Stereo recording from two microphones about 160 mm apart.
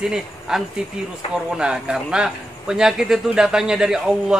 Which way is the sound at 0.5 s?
5° right (ahead or behind).